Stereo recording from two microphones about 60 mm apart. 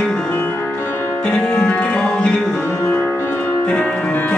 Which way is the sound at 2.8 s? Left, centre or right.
Left.